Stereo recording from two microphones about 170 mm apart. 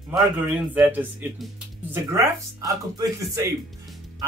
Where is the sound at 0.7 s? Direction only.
10° right (ahead or behind).